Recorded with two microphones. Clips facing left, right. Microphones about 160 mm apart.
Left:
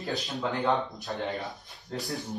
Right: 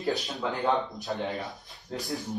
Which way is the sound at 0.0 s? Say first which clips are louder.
Right 2 dB; centre (ahead or behind).